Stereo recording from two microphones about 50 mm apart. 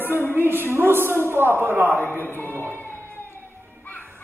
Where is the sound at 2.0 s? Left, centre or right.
Left.